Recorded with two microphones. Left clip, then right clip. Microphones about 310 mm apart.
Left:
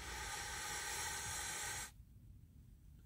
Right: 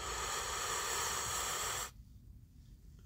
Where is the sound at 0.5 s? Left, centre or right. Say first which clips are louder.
Right 7 dB; right.